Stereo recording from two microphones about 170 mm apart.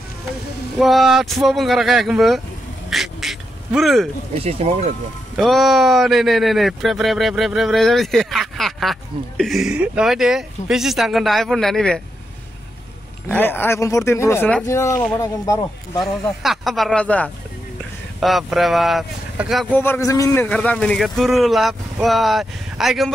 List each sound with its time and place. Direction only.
0.7 s speech: centre (ahead or behind)
2.9 s duck: centre (ahead or behind)
4.4 s speech: 35° right (ahead or behind)
5.4 s speech: centre (ahead or behind)
13.3 s speech: 10° left (ahead or behind)
16.0 s speech: centre (ahead or behind)
19.7 s speech: 15° left (ahead or behind)